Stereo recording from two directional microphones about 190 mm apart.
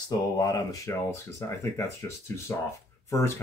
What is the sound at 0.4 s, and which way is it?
Speech, 20° left (ahead or behind).